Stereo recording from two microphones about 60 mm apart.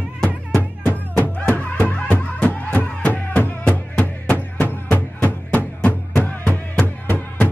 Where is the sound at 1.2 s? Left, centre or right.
Left.